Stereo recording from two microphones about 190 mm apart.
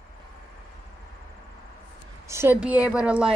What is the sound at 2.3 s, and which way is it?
A woman's voice, 10° right (ahead or behind).